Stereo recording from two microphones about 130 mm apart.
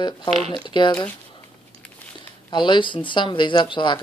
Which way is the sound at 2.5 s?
35° left (ahead or behind).